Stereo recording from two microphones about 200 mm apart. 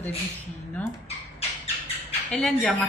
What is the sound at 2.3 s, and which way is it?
Speech, centre (ahead or behind).